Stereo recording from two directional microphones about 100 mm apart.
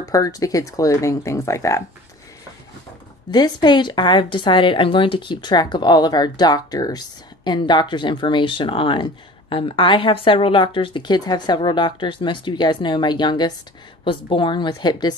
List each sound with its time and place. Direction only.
0.0 s speech: 35° left (ahead or behind)
3.3 s speech: 45° left (ahead or behind)